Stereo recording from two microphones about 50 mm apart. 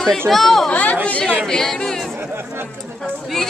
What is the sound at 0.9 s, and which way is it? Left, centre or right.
Speech, left.